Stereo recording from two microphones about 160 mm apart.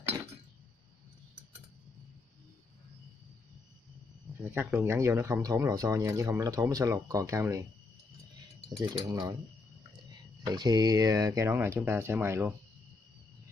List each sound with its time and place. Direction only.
4.5 s speech: 15° right (ahead or behind)
9.0 s speech: 20° right (ahead or behind)
10.4 s speech: 25° right (ahead or behind)